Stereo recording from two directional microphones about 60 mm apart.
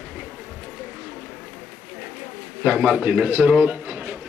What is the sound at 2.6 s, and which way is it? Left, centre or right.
Speech, right.